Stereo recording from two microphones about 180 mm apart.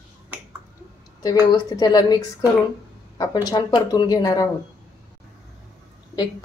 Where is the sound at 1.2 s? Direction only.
20° left (ahead or behind).